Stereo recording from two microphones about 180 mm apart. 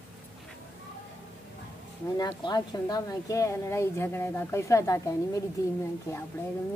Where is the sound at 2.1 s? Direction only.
20° left (ahead or behind).